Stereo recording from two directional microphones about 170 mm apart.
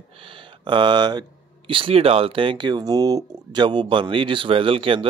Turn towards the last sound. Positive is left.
turn(degrees=-30)  # may be behind; listen again after turning